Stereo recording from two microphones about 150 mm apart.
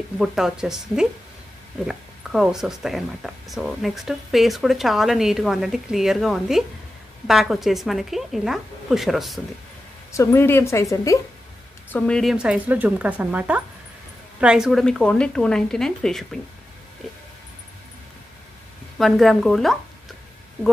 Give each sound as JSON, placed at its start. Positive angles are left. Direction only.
{"t": 0.2, "sound": "speech", "side_deg": -5}
{"t": 10.1, "sound": "a woman's voice", "side_deg": 15}
{"t": 11.9, "sound": "speech", "side_deg": 5}
{"t": 18.9, "sound": "speech", "side_deg": 0}